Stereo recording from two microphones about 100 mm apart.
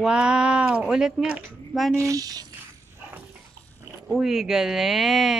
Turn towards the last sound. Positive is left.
turn(degrees=0)  # may be behind; listen again after turning